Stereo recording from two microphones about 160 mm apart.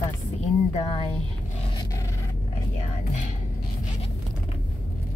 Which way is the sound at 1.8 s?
20° left (ahead or behind).